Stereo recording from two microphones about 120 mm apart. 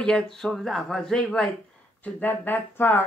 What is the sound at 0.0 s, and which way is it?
Speech, 5° left (ahead or behind).